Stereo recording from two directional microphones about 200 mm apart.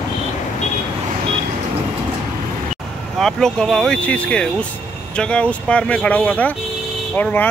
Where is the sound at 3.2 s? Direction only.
Centre (ahead or behind).